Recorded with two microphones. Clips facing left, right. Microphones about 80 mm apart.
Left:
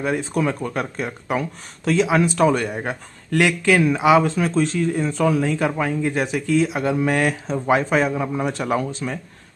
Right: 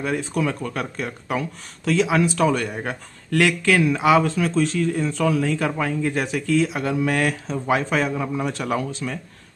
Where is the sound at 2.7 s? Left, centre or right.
Centre.